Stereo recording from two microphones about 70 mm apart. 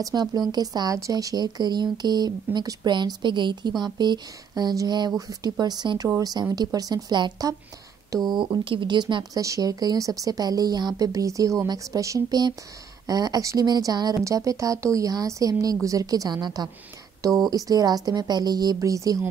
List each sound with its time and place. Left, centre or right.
0.1 s speech: right
5.3 s speech: right
8.1 s speech: right
9.4 s speech: right
11.0 s speech: right
13.7 s speech: right
14.2 s speech: right
16.3 s speech: right
17.5 s speech: right
18.8 s speech: right